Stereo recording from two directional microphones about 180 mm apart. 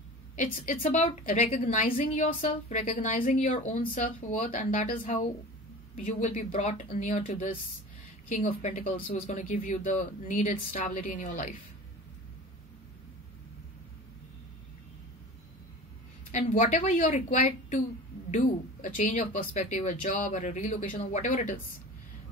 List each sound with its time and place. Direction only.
0.4 s speech: 45° left (ahead or behind)
16.3 s speech: 40° left (ahead or behind)